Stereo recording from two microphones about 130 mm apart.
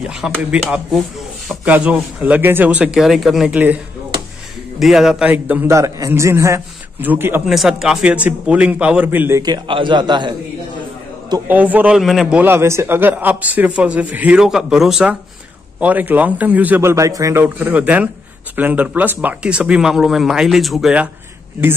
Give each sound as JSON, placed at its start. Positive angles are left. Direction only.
{"t": 0.2, "sound": "a man's voice", "side_deg": -10}
{"t": 3.5, "sound": "a man's voice", "side_deg": -15}
{"t": 4.7, "sound": "a man's voice", "side_deg": -5}
{"t": 5.8, "sound": "a man's voice", "side_deg": -25}
{"t": 7.4, "sound": "a man's voice", "side_deg": 0}
{"t": 9.4, "sound": "a man's voice", "side_deg": -35}
{"t": 11.4, "sound": "a man's voice", "side_deg": -15}
{"t": 12.4, "sound": "a man's voice", "side_deg": -20}